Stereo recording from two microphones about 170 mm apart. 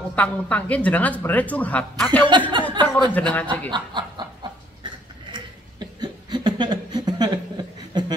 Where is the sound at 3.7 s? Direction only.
25° right (ahead or behind).